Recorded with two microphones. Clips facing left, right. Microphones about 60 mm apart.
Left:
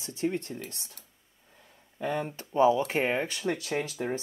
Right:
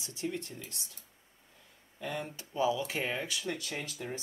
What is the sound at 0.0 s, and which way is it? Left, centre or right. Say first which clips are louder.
Speech: left 7 dB; left.